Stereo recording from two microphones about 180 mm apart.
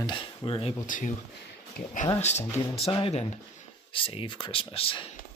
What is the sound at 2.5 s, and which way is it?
Speech, 35° left (ahead or behind).